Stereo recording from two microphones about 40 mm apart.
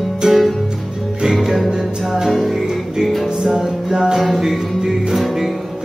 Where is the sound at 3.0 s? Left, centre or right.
Centre.